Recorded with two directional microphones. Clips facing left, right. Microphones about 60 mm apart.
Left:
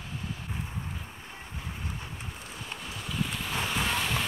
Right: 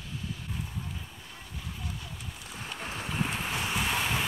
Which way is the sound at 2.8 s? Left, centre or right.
Right.